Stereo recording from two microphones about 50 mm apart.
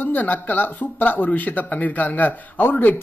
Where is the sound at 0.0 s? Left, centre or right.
Left.